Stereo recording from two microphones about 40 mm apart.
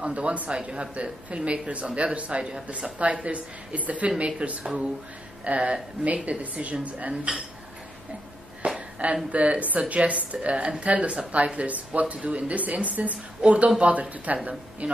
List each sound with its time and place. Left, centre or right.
0.0 s a woman's voice: right
4.4 s a woman's voice: right
8.6 s a woman's voice: right